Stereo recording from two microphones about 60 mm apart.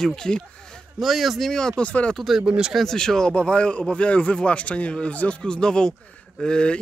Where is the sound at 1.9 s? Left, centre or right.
Left.